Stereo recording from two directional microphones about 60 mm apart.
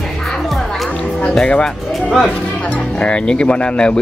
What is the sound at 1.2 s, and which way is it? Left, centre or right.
Music, centre.